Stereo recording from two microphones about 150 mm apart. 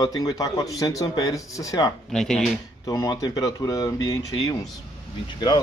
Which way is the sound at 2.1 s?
5° left (ahead or behind).